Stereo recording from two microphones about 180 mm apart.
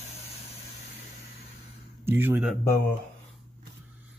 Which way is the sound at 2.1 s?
10° right (ahead or behind).